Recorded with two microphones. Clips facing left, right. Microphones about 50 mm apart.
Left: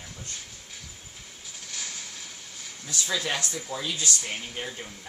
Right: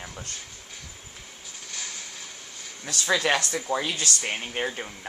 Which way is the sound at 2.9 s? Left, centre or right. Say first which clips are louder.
Right 6 dB; right.